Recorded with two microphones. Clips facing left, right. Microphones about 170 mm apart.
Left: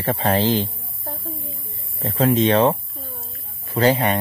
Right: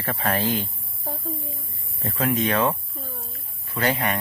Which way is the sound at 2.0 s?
30° left (ahead or behind).